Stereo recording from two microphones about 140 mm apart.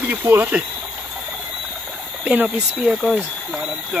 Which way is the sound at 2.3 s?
10° right (ahead or behind).